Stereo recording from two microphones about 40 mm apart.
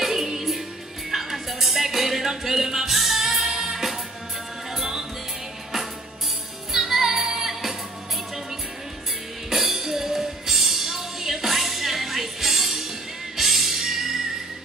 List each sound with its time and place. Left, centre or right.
0.0 s music: centre
6.7 s music: centre
9.5 s music: centre